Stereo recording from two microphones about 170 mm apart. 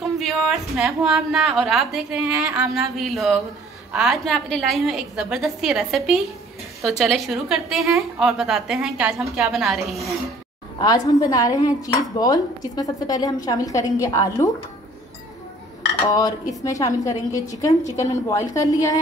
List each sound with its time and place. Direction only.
0.0 s a woman's voice: centre (ahead or behind)
11.1 s speech: 20° left (ahead or behind)
16.1 s speech: 20° left (ahead or behind)